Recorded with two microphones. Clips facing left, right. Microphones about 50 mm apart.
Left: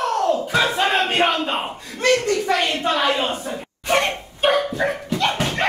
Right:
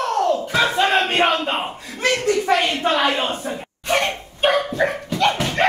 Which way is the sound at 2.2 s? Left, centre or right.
Centre.